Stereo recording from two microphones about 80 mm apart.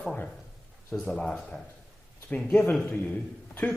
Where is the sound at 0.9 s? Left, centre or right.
Centre.